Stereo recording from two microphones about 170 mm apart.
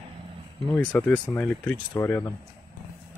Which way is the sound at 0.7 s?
5° left (ahead or behind).